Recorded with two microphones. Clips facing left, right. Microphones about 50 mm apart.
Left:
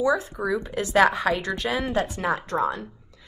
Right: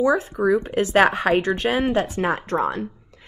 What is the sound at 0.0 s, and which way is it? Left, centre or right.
A woman's voice, right.